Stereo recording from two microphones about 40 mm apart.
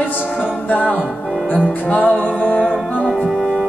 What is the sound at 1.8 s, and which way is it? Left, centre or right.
Music, left.